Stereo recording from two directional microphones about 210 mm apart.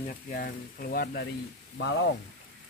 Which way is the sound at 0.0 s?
40° left (ahead or behind).